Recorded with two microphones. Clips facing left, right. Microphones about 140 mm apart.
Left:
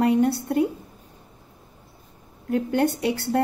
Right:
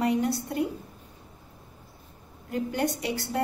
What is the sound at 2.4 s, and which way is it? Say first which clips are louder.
Speech: left 6 dB; 60° left (ahead or behind).